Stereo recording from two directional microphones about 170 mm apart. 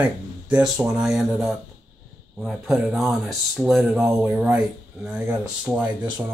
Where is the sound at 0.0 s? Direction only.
10° right (ahead or behind).